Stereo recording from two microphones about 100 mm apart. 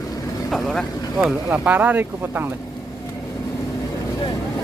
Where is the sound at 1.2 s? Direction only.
15° right (ahead or behind).